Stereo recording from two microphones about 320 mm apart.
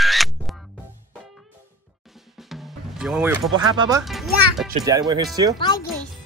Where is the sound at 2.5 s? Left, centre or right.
Centre.